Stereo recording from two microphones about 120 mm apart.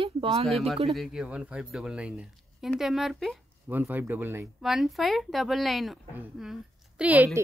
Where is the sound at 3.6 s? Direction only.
15° right (ahead or behind).